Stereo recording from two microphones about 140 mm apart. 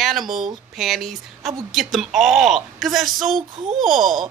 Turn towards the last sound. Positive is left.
turn(degrees=0)  # may be behind; listen again after turning